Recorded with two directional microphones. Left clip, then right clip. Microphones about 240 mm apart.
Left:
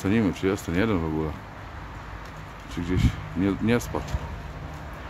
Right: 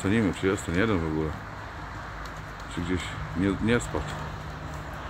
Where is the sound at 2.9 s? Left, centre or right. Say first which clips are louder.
Left 3 dB; centre.